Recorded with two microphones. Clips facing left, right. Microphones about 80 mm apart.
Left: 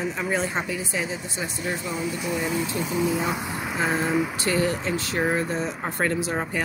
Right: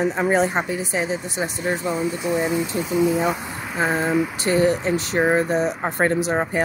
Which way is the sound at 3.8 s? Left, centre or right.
Centre.